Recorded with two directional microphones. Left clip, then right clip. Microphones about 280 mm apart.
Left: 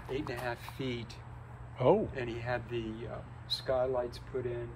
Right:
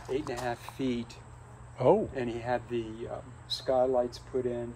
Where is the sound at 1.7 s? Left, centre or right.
Right.